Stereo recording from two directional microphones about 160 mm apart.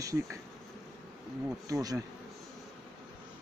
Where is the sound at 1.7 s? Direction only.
25° right (ahead or behind).